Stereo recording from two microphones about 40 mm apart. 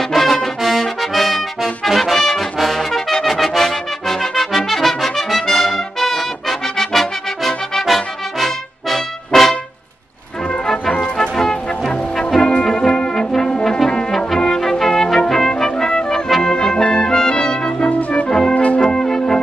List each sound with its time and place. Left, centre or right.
0.1 s music: centre
2.6 s brass instrument: centre
6.8 s music: centre
11.0 s music: centre
12.4 s brass instrument: left
14.4 s music: centre
16.3 s brass instrument: centre
18.5 s music: left
18.8 s music: centre